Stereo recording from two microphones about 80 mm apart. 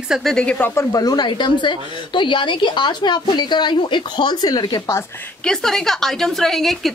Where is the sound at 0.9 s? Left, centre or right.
Left.